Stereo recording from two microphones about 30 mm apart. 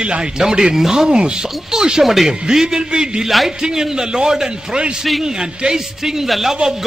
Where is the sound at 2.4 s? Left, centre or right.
Centre.